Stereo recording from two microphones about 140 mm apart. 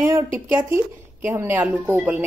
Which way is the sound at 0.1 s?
15° right (ahead or behind).